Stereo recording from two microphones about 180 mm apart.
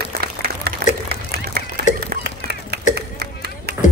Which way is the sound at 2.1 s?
60° right (ahead or behind).